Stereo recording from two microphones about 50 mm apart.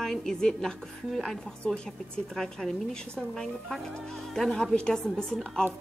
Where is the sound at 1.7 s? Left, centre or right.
Centre.